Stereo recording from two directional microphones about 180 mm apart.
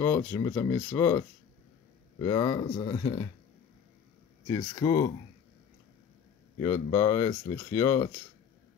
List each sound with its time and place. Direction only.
0.0 s speech: 15° left (ahead or behind)
2.7 s speech: 30° left (ahead or behind)
4.5 s speech: 20° left (ahead or behind)
6.6 s speech: 15° left (ahead or behind)